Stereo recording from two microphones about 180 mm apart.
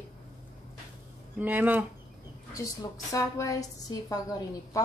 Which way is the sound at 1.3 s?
10° right (ahead or behind).